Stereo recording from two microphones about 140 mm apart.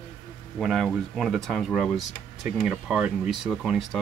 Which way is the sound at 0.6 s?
Centre (ahead or behind).